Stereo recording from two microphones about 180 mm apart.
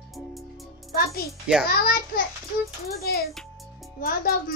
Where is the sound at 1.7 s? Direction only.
55° left (ahead or behind).